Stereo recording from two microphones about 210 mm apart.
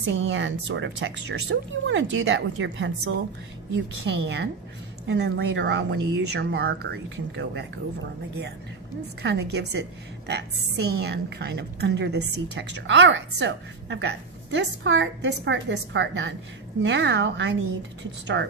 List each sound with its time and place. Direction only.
0.0 s a woman's voice: 60° right (ahead or behind)